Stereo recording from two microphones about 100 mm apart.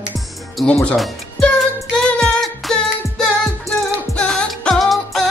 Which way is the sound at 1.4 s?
10° left (ahead or behind).